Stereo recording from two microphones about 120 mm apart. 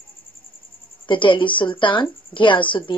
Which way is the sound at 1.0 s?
45° left (ahead or behind).